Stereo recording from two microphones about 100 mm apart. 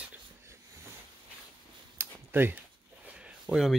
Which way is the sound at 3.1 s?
10° right (ahead or behind).